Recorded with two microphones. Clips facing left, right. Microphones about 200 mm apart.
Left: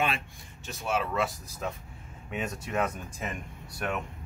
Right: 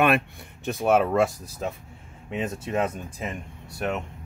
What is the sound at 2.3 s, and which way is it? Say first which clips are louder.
Speech: right 5 dB; 25° right (ahead or behind).